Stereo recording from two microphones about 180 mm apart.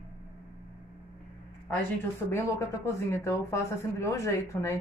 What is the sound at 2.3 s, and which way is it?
Speech, 15° left (ahead or behind).